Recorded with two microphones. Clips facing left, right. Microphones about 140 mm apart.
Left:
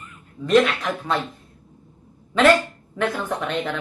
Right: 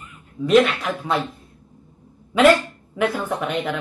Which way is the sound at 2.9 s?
10° right (ahead or behind).